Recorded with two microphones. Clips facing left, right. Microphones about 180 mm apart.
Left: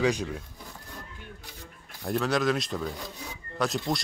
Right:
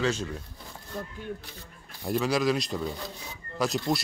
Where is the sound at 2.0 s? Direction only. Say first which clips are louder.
Even; centre (ahead or behind).